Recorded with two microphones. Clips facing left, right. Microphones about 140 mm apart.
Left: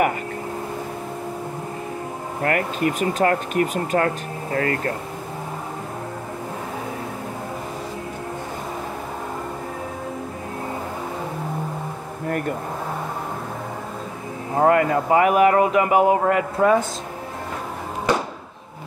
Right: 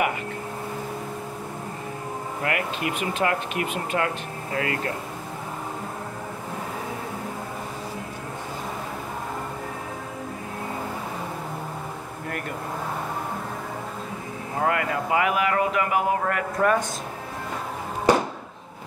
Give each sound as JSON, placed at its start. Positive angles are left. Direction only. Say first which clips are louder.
{"t": 2.4, "sound": "speech", "louder": "left 6 dB", "side_deg": 40}
{"t": 14.6, "sound": "speech", "louder": "left 8 dB", "side_deg": 40}